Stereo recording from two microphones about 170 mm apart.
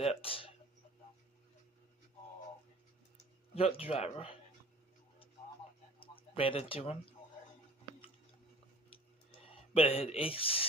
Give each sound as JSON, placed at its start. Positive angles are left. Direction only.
{"t": 0.0, "sound": "speech", "side_deg": 35}
{"t": 3.5, "sound": "speech", "side_deg": 35}
{"t": 5.9, "sound": "a sound", "side_deg": 35}
{"t": 9.3, "sound": "speech", "side_deg": 35}